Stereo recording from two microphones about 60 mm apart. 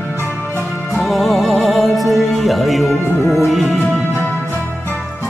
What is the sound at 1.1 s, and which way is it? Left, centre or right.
Music, centre.